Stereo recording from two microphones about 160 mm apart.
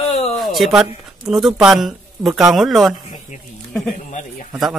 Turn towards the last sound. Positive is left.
turn(degrees=50)  # may be behind; listen again after turning